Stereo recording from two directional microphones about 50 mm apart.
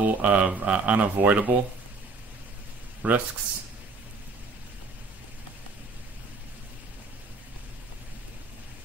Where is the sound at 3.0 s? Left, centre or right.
Right.